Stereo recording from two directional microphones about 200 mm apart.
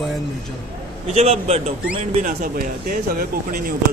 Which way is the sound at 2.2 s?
45° right (ahead or behind).